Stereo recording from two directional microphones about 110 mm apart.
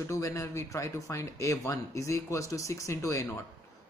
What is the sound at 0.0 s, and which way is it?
Speech, 30° left (ahead or behind).